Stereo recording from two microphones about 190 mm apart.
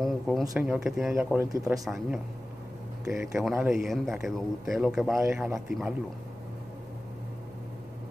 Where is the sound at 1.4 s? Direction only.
15° right (ahead or behind).